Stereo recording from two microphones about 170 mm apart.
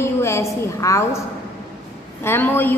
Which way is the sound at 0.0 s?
15° left (ahead or behind).